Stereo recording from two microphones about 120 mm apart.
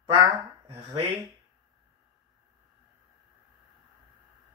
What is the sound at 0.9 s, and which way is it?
Speech, 45° right (ahead or behind).